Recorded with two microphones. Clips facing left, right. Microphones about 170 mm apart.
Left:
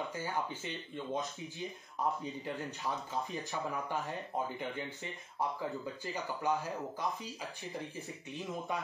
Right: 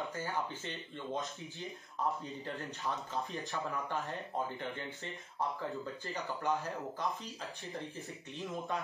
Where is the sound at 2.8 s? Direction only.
Centre (ahead or behind).